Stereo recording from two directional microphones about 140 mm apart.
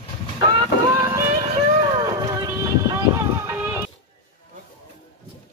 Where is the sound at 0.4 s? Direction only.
35° right (ahead or behind).